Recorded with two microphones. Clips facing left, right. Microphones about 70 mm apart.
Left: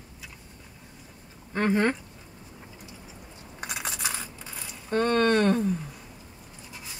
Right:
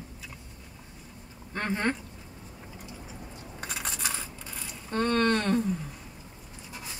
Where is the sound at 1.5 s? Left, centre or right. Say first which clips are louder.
Left 5 dB; centre.